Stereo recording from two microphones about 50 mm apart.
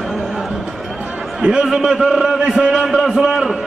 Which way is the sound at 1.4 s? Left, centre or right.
Centre.